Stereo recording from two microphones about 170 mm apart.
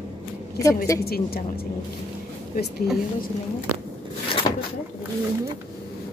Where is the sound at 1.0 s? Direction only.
65° left (ahead or behind).